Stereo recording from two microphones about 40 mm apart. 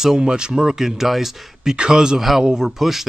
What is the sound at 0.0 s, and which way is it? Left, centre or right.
Speech, centre.